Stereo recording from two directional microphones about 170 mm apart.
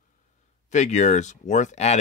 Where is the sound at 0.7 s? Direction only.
45° left (ahead or behind).